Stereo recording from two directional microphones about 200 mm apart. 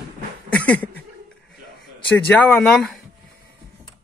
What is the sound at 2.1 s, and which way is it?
Speech, 5° left (ahead or behind).